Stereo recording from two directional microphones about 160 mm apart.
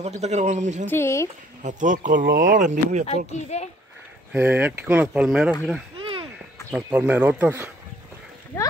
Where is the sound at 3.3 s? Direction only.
45° left (ahead or behind).